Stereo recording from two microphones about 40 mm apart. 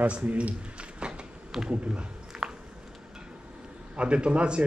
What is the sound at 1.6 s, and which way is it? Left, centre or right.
Speech, centre.